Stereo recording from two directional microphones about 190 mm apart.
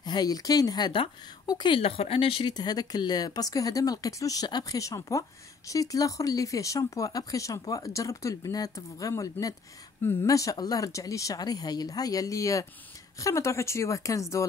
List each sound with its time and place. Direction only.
0.0 s speech: 20° left (ahead or behind)